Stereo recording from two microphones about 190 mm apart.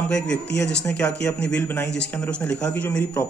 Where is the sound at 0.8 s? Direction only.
5° left (ahead or behind).